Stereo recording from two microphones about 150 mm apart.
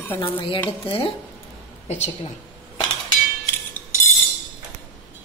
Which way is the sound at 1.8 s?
50° left (ahead or behind).